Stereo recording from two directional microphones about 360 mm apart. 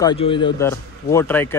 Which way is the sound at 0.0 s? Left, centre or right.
Centre.